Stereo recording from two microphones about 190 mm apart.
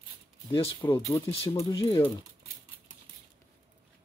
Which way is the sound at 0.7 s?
15° left (ahead or behind).